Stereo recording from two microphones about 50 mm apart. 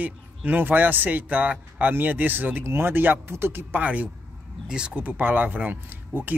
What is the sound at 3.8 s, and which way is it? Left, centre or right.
Speech, right.